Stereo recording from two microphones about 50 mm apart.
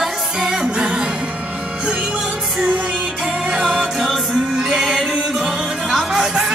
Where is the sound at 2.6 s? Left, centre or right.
Right.